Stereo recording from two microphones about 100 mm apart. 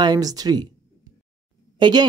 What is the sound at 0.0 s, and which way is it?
Speech, 40° right (ahead or behind).